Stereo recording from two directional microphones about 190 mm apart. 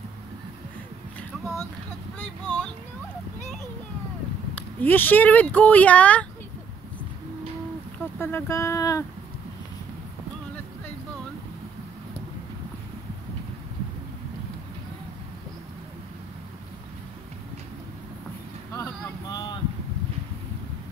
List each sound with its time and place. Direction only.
1.4 s speech: 15° left (ahead or behind)
4.7 s speech: 10° left (ahead or behind)
8.2 s speech: 10° left (ahead or behind)
18.8 s boat: 20° left (ahead or behind)